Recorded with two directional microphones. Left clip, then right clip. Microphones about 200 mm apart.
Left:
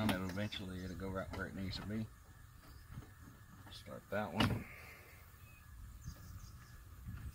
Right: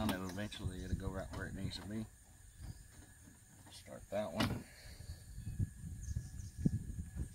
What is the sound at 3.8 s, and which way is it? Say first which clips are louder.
Speech: right 1 dB; 20° left (ahead or behind).